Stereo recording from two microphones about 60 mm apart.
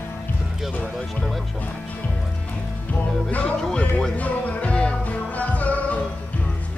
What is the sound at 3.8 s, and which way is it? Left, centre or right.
Music, left.